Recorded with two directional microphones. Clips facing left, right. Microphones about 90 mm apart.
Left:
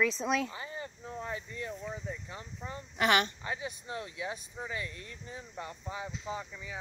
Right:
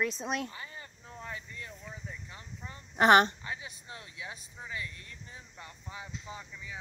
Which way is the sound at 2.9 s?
35° right (ahead or behind).